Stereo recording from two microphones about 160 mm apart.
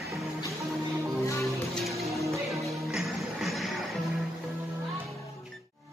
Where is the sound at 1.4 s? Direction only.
Centre (ahead or behind).